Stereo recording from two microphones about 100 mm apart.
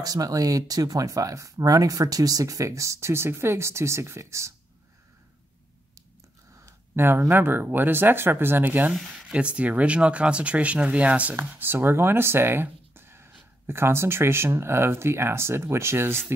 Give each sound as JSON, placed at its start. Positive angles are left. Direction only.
{"t": 0.0, "sound": "speech", "side_deg": -40}
{"t": 7.0, "sound": "speech", "side_deg": -20}
{"t": 8.9, "sound": "speech", "side_deg": -5}